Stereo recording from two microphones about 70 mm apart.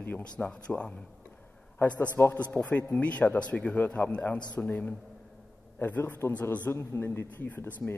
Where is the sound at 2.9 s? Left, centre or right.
Centre.